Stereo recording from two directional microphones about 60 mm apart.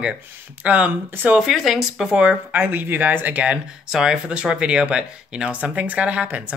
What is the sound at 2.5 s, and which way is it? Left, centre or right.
Speech, right.